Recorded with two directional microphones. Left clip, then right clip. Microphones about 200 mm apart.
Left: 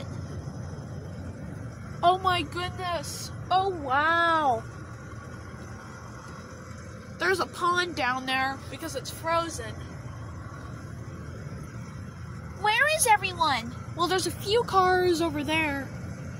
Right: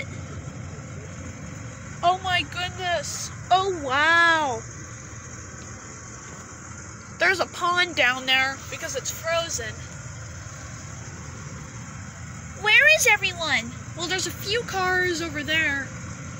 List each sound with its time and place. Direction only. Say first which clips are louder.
2.0 s vehicle: right 1 dB; 15° left (ahead or behind)
3.4 s a child's voice: right 4 dB; centre (ahead or behind)
7.2 s speech: right 4 dB; 10° right (ahead or behind)
8.3 s speech: right 6 dB; 10° left (ahead or behind)
12.6 s a woman's voice: right 6 dB; 10° left (ahead or behind)